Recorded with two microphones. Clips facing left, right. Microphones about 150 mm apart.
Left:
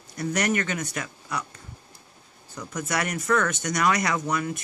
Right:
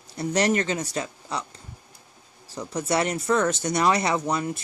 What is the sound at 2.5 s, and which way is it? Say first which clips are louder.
Speech: right 4 dB; 30° right (ahead or behind).